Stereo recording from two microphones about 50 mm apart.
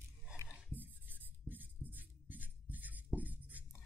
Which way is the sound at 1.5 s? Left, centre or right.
Right.